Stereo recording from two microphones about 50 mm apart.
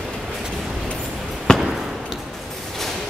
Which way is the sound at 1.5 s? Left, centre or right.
Centre.